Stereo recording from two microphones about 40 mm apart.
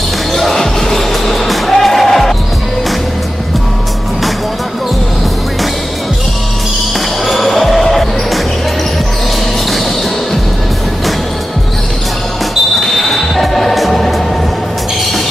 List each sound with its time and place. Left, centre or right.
0.3 s basketball bounce: centre
0.6 s music: centre
7.2 s music: centre
12.8 s music: centre